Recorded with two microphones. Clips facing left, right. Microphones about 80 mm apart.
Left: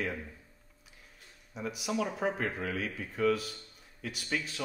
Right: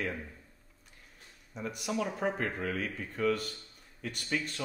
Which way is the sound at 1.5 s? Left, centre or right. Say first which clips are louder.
Left 1 dB; centre.